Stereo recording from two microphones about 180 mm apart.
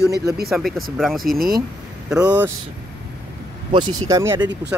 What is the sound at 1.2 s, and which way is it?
Speech, 55° right (ahead or behind).